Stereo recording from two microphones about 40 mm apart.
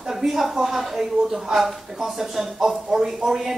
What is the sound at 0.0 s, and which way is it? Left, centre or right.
Speech, centre.